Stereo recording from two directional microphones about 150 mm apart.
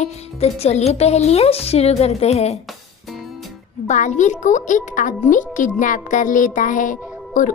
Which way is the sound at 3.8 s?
55° left (ahead or behind).